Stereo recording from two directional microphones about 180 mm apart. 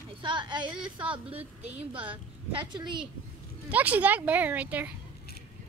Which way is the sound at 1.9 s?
10° right (ahead or behind).